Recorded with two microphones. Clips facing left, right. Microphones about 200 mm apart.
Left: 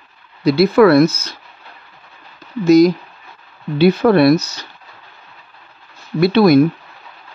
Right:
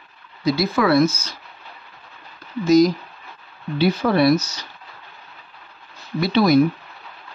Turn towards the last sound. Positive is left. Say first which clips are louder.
# left 5 dB
turn(degrees=60)  # may be behind; listen again after turning